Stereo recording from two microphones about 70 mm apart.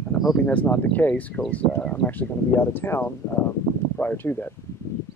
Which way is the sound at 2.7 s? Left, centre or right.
Left.